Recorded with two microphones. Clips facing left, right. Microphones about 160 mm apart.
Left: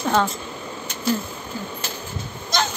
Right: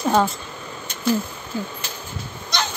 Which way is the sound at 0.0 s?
10° right (ahead or behind).